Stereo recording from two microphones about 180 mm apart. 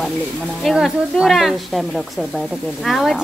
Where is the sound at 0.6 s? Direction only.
Centre (ahead or behind).